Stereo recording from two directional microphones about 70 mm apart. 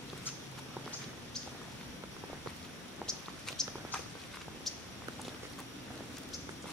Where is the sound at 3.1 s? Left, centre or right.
Centre.